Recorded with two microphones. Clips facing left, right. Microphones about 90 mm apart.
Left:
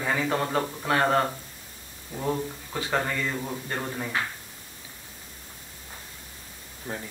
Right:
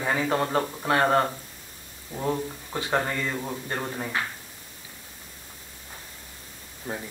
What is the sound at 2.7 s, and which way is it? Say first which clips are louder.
Speech: right 1 dB; 25° right (ahead or behind).